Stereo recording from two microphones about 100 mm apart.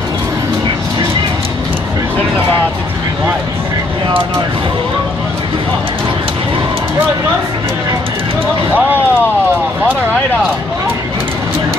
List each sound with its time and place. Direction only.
8.7 s speech: 15° right (ahead or behind)